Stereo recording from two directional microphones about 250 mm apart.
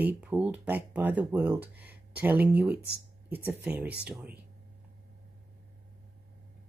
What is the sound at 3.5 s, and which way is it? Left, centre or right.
Speech, centre.